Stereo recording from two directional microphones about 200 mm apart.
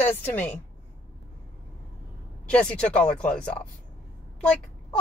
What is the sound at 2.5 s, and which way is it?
A woman's voice, 5° left (ahead or behind).